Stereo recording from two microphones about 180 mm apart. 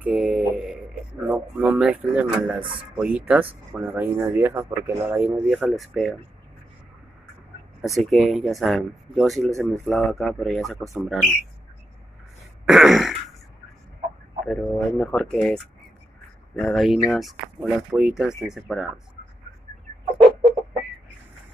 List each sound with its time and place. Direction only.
0.0 s speech: 10° right (ahead or behind)
2.6 s speech: 30° right (ahead or behind)
3.0 s speech: 10° right (ahead or behind)
7.8 s speech: centre (ahead or behind)
12.6 s speech: centre (ahead or behind)
14.4 s speech: 5° left (ahead or behind)